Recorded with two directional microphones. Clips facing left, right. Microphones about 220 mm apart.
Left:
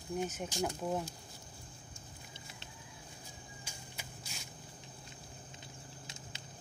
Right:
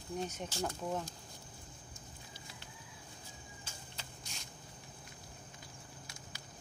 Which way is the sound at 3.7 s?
10° left (ahead or behind).